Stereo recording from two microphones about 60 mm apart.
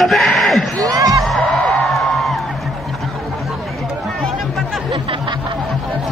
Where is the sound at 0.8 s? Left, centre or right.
Right.